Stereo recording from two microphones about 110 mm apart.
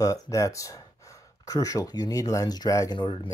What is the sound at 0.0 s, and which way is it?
Speech, 30° left (ahead or behind).